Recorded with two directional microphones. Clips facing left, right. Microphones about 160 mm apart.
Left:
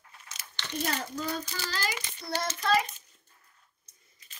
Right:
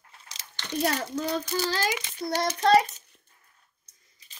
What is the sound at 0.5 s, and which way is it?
Speech, 65° right (ahead or behind).